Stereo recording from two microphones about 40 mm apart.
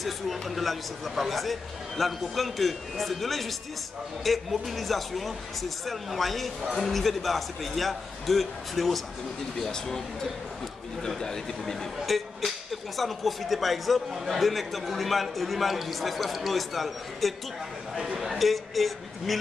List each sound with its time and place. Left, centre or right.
0.0 s speech: centre
12.1 s speech: centre
17.9 s speech: centre
18.4 s speech: centre